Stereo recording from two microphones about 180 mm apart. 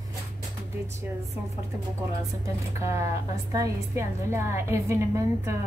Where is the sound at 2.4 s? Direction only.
15° right (ahead or behind).